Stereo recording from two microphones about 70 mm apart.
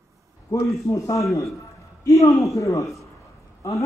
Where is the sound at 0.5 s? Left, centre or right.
Left.